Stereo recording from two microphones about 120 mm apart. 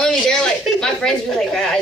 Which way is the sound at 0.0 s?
5° left (ahead or behind).